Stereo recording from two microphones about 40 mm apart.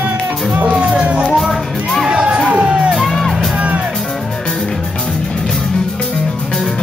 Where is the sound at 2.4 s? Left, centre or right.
Right.